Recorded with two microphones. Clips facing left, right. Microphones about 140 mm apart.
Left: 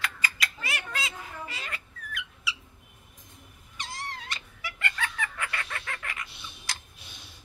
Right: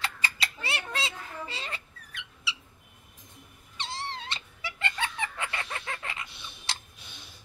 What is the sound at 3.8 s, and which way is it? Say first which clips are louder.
Cat: right 2 dB; 25° right (ahead or behind).